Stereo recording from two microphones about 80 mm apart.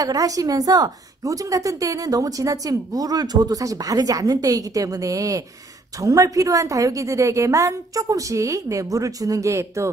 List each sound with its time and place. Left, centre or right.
0.0 s speech: right